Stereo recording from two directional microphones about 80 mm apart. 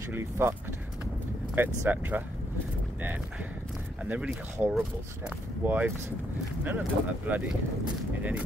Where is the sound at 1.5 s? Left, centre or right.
Right.